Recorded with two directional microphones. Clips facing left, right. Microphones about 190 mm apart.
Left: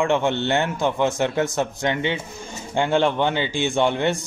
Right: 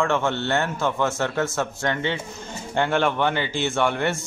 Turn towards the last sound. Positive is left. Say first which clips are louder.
# left 2 dB
turn(degrees=20)  # may be behind; listen again after turning